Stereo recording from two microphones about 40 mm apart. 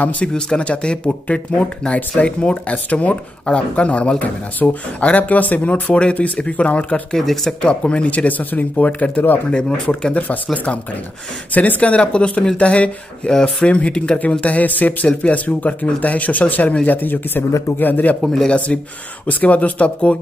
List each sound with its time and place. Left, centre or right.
0.0 s speech: left
0.3 s speech: left
11.5 s a man's voice: left
12.0 s speech: left
13.3 s speech: centre
13.7 s speech: left
14.4 s a man's voice: left
18.2 s speech: centre
18.7 s speech: left
19.2 s speech: left